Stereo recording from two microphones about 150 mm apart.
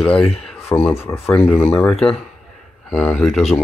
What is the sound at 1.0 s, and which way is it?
Speech, 15° left (ahead or behind).